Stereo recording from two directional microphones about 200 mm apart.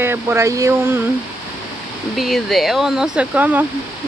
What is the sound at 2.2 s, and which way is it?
Speech, centre (ahead or behind).